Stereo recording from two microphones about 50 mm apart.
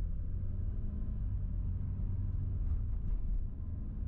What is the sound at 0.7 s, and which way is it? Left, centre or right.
Vehicle, centre.